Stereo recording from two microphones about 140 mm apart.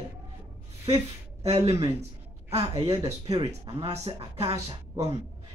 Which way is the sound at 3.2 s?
30° right (ahead or behind).